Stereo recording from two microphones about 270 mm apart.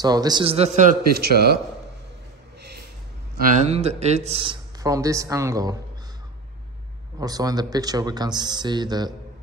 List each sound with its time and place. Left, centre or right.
0.0 s a man's voice: centre; by 1.6 s right
3.5 s speech: right
7.2 s speech: centre